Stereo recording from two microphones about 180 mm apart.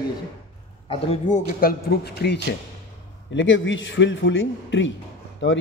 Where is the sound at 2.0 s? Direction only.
65° left (ahead or behind).